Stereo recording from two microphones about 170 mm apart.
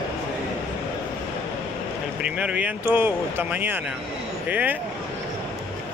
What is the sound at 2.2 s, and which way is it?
Speech, 5° right (ahead or behind).